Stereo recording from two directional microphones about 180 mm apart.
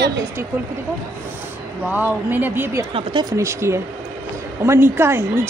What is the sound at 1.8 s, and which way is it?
A woman's voice, 10° right (ahead or behind).